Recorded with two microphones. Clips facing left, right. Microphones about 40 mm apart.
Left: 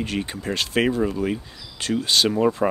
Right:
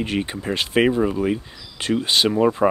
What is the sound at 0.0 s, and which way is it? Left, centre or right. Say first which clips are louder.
Speech: right 3 dB; centre.